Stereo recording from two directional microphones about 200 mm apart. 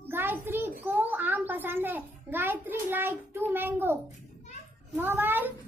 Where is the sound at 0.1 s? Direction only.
10° right (ahead or behind).